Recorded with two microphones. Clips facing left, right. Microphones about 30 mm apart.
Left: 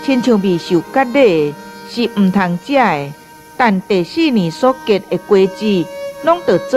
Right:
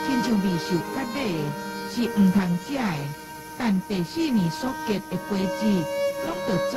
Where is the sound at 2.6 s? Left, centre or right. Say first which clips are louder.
Left 15 dB; left.